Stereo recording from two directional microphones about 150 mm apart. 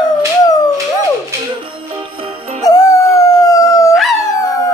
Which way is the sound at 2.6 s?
25° left (ahead or behind).